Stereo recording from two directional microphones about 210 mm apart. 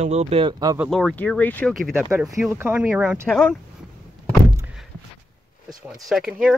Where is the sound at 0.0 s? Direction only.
30° right (ahead or behind).